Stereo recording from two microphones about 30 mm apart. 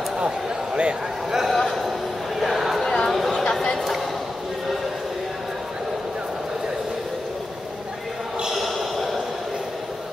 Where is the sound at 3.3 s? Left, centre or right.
Left.